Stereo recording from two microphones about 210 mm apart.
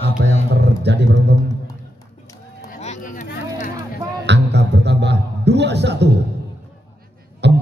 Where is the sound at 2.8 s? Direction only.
35° left (ahead or behind).